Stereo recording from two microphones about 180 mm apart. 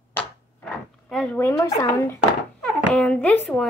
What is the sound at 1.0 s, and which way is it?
A woman's voice, 5° left (ahead or behind).